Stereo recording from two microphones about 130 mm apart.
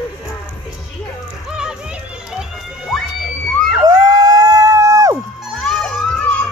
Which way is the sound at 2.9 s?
Centre (ahead or behind).